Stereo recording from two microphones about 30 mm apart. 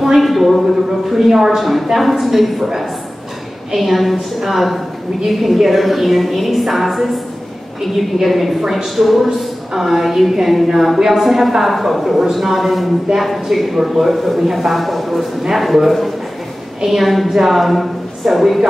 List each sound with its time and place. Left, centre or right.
0.2 s a sound: centre
1.6 s speech: centre
8.2 s a woman's voice: centre
18.3 s a woman's voice: centre